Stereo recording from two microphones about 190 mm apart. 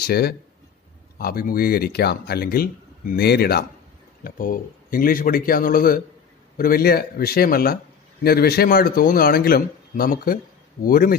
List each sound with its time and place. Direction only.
0.0 s speech: 55° left (ahead or behind)